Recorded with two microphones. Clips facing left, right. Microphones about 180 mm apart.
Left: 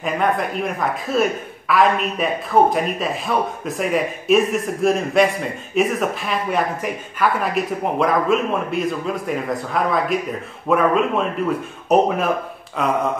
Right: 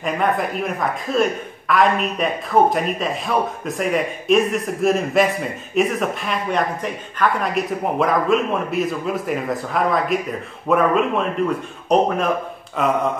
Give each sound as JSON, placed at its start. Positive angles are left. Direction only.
{"t": 0.0, "sound": "a man's voice", "side_deg": 0}